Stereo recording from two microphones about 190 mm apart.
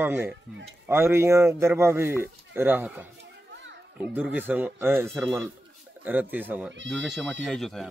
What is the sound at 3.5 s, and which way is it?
Children playing, 75° right (ahead or behind).